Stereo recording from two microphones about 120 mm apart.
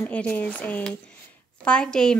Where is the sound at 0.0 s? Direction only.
10° left (ahead or behind).